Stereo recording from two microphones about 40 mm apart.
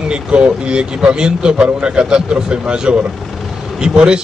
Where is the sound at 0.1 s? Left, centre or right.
Right.